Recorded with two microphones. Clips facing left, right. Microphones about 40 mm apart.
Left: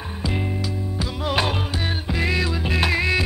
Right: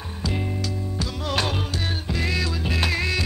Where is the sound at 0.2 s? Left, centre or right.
Centre.